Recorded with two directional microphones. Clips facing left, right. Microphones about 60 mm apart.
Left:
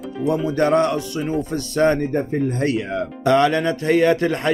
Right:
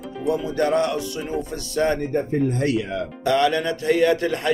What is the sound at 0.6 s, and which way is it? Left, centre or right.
Speech, left.